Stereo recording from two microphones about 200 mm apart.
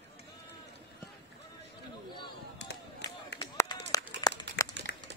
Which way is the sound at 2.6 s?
60° left (ahead or behind).